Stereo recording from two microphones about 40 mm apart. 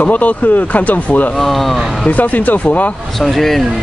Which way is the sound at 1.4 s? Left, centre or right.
Centre.